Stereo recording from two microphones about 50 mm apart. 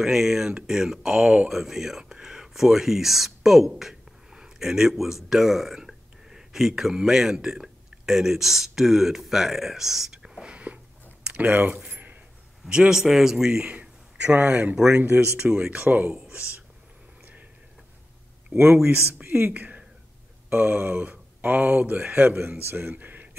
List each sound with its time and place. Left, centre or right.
0.0 s a man's voice: centre; by 10.8 s right
12.6 s a man's voice: centre
13.7 s a man's voice: right
15.0 s a man's voice: right
15.7 s a man's voice: right
18.5 s speech: right
19.2 s whispering: right
19.5 s speech: right
20.8 s a man's voice: right
22.0 s a man's voice: right
22.5 s a man's voice: right